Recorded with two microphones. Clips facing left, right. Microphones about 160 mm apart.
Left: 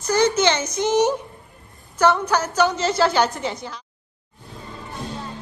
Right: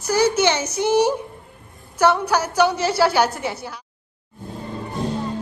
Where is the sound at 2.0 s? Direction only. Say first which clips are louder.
Right 1 dB; 10° right (ahead or behind).